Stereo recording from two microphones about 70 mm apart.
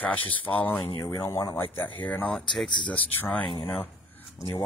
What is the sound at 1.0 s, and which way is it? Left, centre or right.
Speech, left.